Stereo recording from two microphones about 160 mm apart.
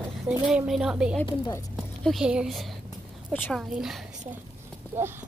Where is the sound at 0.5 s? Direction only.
Centre (ahead or behind).